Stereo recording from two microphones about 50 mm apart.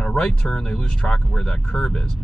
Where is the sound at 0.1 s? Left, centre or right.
Centre.